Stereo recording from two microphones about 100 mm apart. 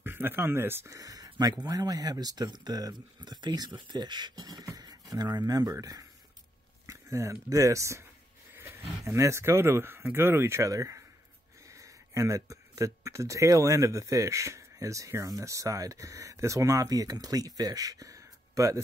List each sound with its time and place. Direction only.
0.0 s speech: 20° right (ahead or behind)
0.8 s speech: 35° right (ahead or behind)